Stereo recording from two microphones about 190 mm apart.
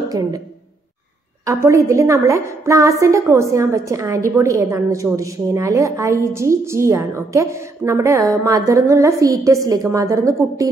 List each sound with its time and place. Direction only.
0.1 s speech: 20° right (ahead or behind)
1.4 s a woman's voice: 15° right (ahead or behind)